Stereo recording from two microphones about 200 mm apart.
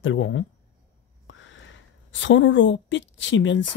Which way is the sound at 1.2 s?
70° left (ahead or behind).